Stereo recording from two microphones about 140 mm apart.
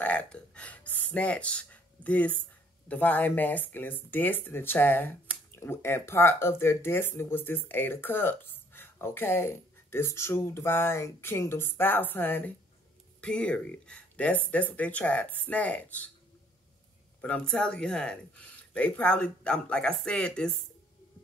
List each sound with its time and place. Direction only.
0.0 s speech: 10° left (ahead or behind)
17.2 s speech: 10° left (ahead or behind)